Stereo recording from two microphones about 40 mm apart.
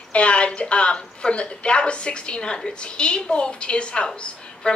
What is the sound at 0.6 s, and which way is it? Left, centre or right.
A woman's voice, left.